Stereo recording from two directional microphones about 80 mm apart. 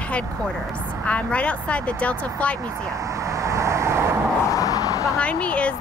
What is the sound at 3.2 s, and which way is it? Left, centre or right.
Vehicle, right.